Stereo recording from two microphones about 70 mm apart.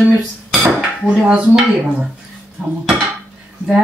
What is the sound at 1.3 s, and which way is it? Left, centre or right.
Speech, centre.